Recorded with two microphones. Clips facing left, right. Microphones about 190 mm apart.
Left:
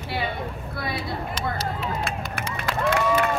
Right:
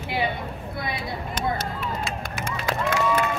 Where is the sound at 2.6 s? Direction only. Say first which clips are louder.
Left 1 dB; 60° left (ahead or behind).